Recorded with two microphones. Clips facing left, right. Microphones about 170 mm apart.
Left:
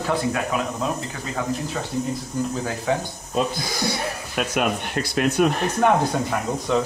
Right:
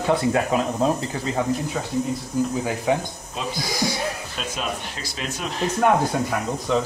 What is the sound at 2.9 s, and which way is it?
Speech, 15° right (ahead or behind).